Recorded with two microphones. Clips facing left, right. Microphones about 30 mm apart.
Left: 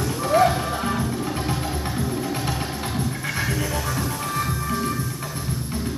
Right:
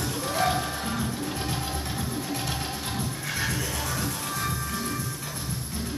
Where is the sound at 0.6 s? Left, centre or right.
Left.